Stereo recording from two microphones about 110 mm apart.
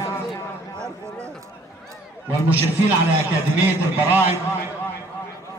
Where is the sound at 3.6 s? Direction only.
20° right (ahead or behind).